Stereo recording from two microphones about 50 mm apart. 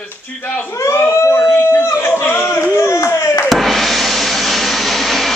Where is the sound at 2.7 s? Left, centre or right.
Left.